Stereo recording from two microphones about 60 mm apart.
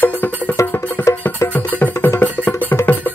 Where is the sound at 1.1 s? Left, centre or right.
Left.